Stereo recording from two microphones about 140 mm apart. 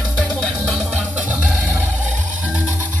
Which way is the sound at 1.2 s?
10° right (ahead or behind).